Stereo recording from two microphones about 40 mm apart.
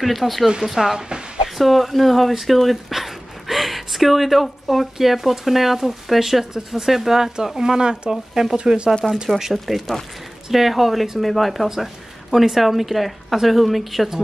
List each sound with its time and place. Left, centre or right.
0.0 s speech: centre
1.0 s a sound: right
1.6 s speech: centre
8.5 s speech: right
9.4 s speech: centre